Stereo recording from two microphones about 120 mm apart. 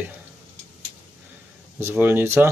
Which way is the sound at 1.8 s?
20° right (ahead or behind).